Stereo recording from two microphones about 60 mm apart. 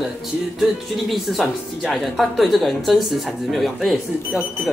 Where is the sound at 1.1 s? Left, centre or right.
Centre.